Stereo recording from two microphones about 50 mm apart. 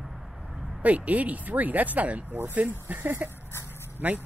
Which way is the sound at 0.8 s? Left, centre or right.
Right.